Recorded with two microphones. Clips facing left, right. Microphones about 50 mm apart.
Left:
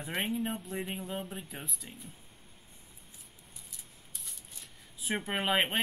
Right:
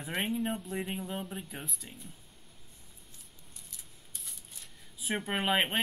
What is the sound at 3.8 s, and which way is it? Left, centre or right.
Shuffling cards, centre.